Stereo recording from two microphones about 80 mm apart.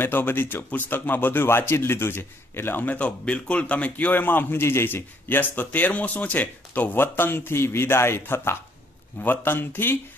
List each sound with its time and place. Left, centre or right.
0.0 s speech: left